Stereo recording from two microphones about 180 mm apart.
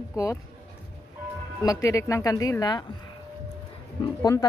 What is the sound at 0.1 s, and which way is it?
Speech, 15° left (ahead or behind).